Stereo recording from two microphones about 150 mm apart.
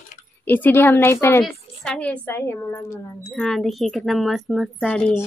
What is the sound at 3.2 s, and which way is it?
Speech, 5° left (ahead or behind).